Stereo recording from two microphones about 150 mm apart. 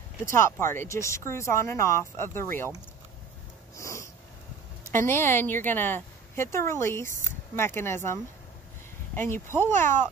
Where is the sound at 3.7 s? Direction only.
20° left (ahead or behind).